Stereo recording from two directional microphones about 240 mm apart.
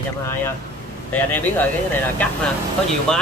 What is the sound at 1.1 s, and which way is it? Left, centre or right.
Speech, centre.